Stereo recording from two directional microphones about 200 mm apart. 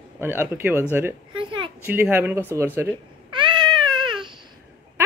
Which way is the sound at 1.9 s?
10° right (ahead or behind).